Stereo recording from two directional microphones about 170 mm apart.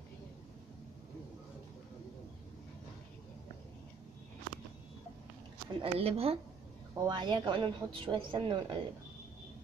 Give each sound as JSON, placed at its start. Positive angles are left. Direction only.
{"t": 5.7, "sound": "a woman's voice", "side_deg": -35}